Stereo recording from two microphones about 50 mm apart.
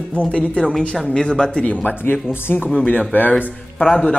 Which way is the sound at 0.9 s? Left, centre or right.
Centre.